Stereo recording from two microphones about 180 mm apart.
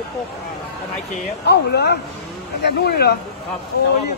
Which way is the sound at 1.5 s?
65° left (ahead or behind).